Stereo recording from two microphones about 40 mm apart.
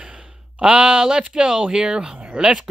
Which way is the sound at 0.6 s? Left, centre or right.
Right.